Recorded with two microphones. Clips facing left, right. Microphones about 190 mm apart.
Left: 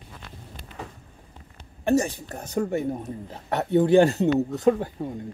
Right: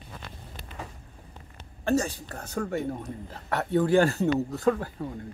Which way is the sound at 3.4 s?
25° left (ahead or behind).